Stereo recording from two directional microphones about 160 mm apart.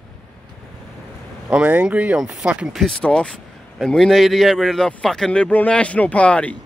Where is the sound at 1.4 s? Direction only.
10° right (ahead or behind).